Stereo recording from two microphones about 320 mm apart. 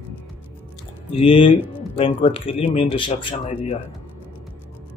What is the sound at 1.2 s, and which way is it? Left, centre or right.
Speech, centre.